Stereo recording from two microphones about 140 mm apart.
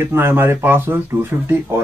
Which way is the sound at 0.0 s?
15° right (ahead or behind).